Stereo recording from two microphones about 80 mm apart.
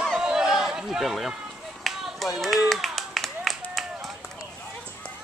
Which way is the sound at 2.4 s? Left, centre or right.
Centre.